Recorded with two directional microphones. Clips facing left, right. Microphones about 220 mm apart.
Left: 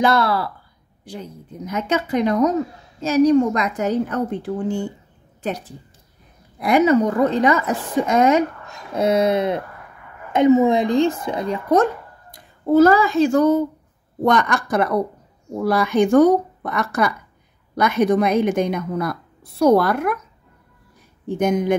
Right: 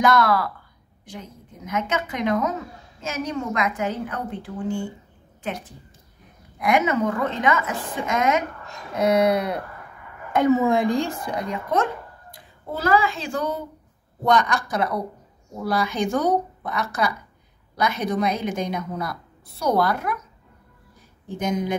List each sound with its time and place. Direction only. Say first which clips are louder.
0.0 s a woman's voice: left 1 dB; 30° left (ahead or behind)
1.7 s a woman's voice: left 5 dB; 35° left (ahead or behind)
6.6 s a woman's voice: left 6 dB; 35° left (ahead or behind)
14.2 s speech: left 3 dB; 55° left (ahead or behind)
21.4 s speech: left 6 dB; 55° left (ahead or behind)